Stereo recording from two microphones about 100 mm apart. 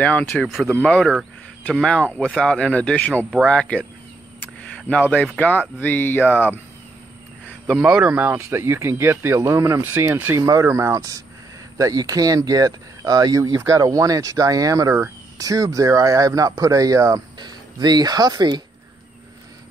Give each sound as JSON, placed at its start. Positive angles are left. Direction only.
{"t": 0.0, "sound": "speech", "side_deg": 15}
{"t": 4.4, "sound": "a sound", "side_deg": 15}
{"t": 5.4, "sound": "speech", "side_deg": 15}
{"t": 7.7, "sound": "speech", "side_deg": -5}
{"t": 17.4, "sound": "speech", "side_deg": -45}